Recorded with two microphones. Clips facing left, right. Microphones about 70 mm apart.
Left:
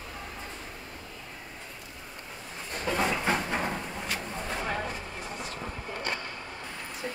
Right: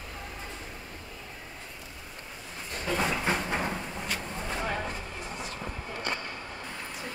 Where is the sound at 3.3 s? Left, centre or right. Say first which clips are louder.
Left 1 dB; centre.